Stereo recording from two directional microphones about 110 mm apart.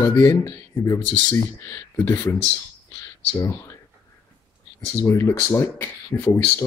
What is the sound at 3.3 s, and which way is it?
Speech, 20° left (ahead or behind).